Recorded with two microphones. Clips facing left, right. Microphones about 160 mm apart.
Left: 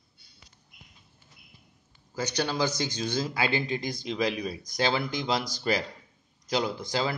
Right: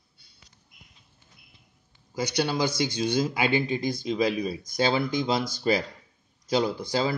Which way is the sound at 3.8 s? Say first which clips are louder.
Right 4 dB; 50° right (ahead or behind).